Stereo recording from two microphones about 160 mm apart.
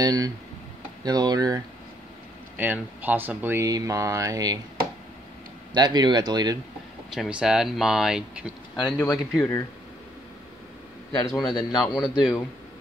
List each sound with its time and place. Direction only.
0.0 s speech: 25° right (ahead or behind)
2.5 s speech: 10° right (ahead or behind)
5.7 s speech: 25° right (ahead or behind)
7.2 s speech: 5° right (ahead or behind)
8.7 s speech: 25° left (ahead or behind)
9.1 s speech: centre (ahead or behind)
11.2 s speech: centre (ahead or behind)